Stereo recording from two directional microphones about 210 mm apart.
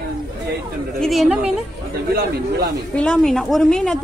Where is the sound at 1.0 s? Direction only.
Centre (ahead or behind).